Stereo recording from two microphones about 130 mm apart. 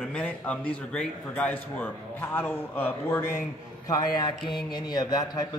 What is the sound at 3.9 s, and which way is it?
A man's voice, 30° left (ahead or behind).